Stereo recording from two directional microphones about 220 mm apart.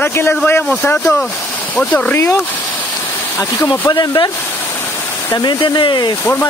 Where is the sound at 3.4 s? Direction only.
10° left (ahead or behind).